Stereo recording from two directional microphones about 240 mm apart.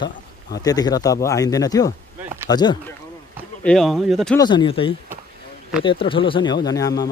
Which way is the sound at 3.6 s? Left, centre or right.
Centre.